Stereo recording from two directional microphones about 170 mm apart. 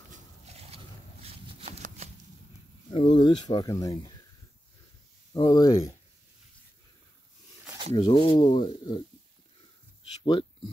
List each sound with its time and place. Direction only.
0.1 s a sound: 35° right (ahead or behind)
2.9 s speech: 35° left (ahead or behind)
5.3 s speech: 25° left (ahead or behind)
7.9 s speech: 25° left (ahead or behind)